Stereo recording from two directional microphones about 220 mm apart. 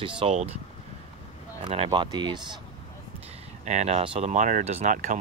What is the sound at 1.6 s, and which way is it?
Speech, 25° right (ahead or behind).